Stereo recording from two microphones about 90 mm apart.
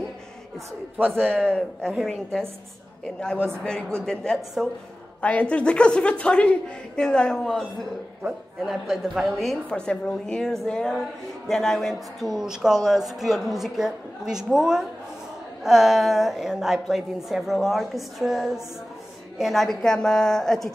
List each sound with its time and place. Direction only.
0.9 s a man's voice: 20° right (ahead or behind)
1.3 s a woman's voice: 10° left (ahead or behind)
3.3 s a man's voice: 25° right (ahead or behind)
4.0 s a woman's voice: 5° left (ahead or behind)
8.6 s a woman's voice: centre (ahead or behind)